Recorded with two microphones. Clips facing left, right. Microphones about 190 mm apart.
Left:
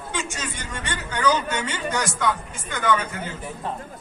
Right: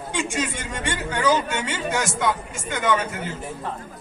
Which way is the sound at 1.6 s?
10° right (ahead or behind).